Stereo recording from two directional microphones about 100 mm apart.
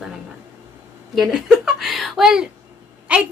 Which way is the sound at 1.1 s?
5° right (ahead or behind).